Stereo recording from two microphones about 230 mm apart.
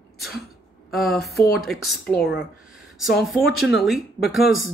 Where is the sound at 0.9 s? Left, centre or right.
Centre.